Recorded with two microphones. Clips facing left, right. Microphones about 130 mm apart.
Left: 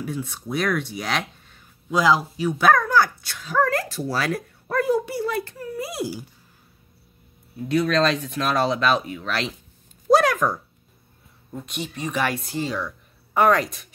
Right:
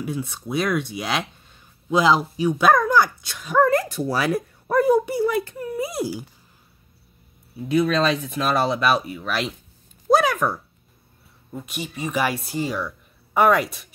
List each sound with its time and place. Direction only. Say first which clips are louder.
0.0 s speech: right 1 dB; 15° right (ahead or behind)
1.9 s speech: right 1 dB; 20° right (ahead or behind)
7.6 s speech: right 1 dB; 5° right (ahead or behind)
10.1 s a sound: left 1 dB; 5° right (ahead or behind)
11.5 s speech: even; 5° right (ahead or behind)